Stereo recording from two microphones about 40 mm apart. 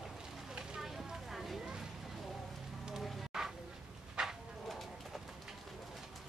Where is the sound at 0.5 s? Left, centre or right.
Centre.